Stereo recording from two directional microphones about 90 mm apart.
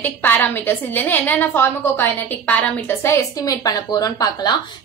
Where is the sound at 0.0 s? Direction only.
20° left (ahead or behind).